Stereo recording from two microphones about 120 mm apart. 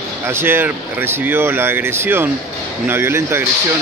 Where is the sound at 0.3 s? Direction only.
20° right (ahead or behind).